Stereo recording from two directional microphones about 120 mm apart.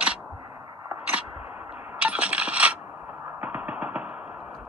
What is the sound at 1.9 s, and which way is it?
Coin, 10° right (ahead or behind).